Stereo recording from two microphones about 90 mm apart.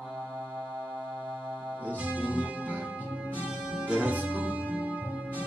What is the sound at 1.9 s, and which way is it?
Music, 15° right (ahead or behind).